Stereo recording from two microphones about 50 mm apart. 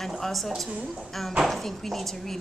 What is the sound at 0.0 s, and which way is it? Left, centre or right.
A woman's voice, centre.